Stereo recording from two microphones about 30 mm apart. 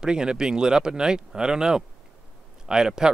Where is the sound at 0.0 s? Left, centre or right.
Right.